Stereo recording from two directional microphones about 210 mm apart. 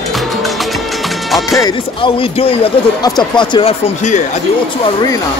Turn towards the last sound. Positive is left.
turn(degrees=20)  # may be behind; listen again after turning